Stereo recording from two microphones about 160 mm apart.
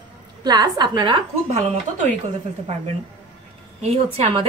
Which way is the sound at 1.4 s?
50° right (ahead or behind).